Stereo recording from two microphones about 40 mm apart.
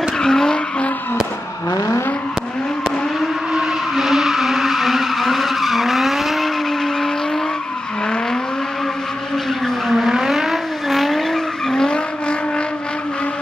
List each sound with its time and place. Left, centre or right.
0.2 s vehicle: centre
3.9 s vehicle: centre
9.8 s vehicle: centre
11.3 s vehicle: centre
11.9 s vehicle: left